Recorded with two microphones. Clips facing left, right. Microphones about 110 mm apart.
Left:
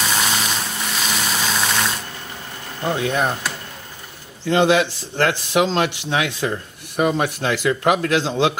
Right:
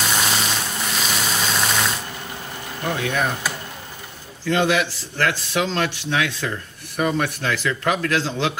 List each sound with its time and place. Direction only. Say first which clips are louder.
0.0 s vehicle: left 1 dB; centre (ahead or behind)
2.8 s speech: left 3 dB; 20° left (ahead or behind)
4.5 s speech: left 4 dB; 20° left (ahead or behind)